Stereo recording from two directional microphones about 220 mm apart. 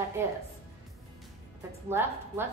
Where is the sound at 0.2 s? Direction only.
10° right (ahead or behind).